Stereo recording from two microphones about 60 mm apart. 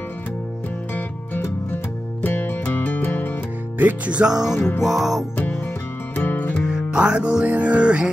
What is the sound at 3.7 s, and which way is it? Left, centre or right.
Music, right.